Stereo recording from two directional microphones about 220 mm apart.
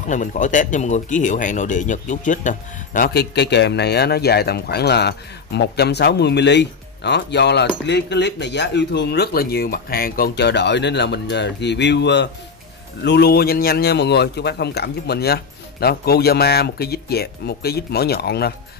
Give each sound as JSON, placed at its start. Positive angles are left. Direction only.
{"t": 0.1, "sound": "speech", "side_deg": 35}